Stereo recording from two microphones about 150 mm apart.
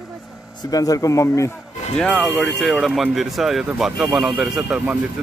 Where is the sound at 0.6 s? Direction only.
25° left (ahead or behind).